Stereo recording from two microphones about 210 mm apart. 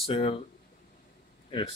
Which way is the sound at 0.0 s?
25° left (ahead or behind).